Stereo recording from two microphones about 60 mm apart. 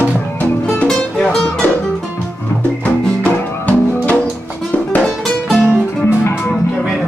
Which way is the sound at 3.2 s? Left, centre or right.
Left.